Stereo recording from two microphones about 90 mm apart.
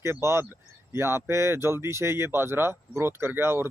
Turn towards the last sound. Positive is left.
turn(degrees=-25)  # may be behind; listen again after turning